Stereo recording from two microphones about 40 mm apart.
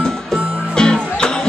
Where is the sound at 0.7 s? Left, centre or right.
Centre.